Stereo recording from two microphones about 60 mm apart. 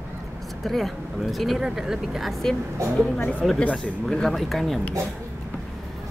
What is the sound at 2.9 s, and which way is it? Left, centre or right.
Speech, centre.